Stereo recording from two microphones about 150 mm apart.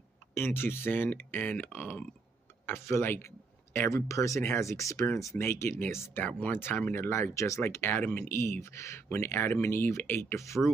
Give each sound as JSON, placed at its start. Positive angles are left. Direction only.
{"t": 0.3, "sound": "speech", "side_deg": 15}